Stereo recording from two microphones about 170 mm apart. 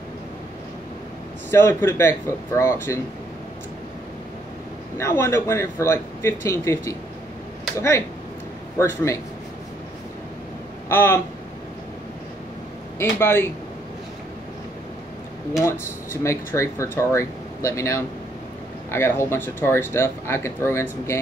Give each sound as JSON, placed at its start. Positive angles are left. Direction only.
{"t": 1.5, "sound": "speech", "side_deg": 15}
{"t": 4.9, "sound": "speech", "side_deg": 15}
{"t": 8.7, "sound": "speech", "side_deg": 15}
{"t": 10.9, "sound": "a sound", "side_deg": 15}
{"t": 13.2, "sound": "speech", "side_deg": 15}
{"t": 15.6, "sound": "speech", "side_deg": 15}